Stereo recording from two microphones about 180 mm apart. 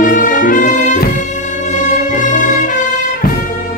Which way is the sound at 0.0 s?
50° left (ahead or behind).